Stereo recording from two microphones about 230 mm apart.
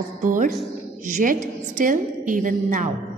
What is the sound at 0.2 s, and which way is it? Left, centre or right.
A woman's voice, right.